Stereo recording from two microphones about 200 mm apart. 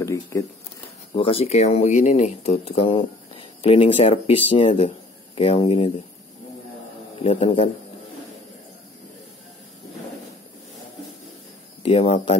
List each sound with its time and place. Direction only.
0.0 s speech: 15° left (ahead or behind)
1.1 s speech: 25° left (ahead or behind)
7.2 s speech: 30° left (ahead or behind)
11.8 s speech: 30° left (ahead or behind)